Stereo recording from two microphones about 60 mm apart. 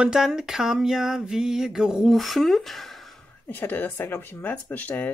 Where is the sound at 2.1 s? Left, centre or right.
Centre.